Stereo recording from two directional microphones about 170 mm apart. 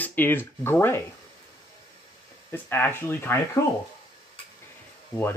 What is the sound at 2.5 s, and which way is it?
Speech, 15° left (ahead or behind).